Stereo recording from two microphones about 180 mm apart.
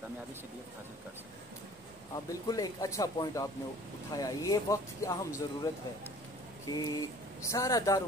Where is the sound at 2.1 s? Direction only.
20° left (ahead or behind).